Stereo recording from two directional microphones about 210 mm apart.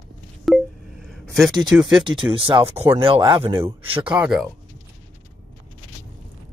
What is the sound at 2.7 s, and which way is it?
Speech, 10° right (ahead or behind).